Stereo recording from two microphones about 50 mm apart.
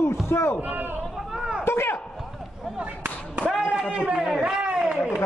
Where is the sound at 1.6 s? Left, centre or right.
Left.